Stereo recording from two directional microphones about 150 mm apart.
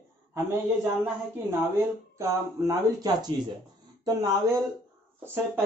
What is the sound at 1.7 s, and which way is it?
Speech, 20° right (ahead or behind).